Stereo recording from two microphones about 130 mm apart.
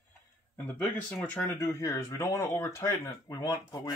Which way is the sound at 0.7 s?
15° left (ahead or behind).